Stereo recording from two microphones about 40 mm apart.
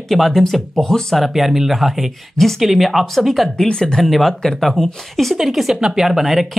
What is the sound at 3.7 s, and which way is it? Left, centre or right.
Speech, left.